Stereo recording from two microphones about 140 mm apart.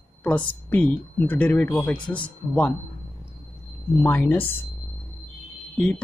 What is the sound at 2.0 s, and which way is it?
Speech, 35° left (ahead or behind).